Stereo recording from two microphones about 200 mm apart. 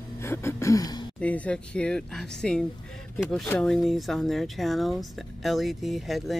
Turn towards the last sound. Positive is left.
turn(degrees=0)  # may be behind; listen again after turning